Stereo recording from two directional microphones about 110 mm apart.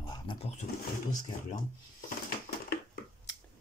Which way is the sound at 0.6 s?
90° left.